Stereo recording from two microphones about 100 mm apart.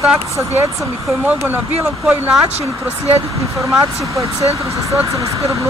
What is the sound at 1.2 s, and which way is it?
Speech, 15° right (ahead or behind).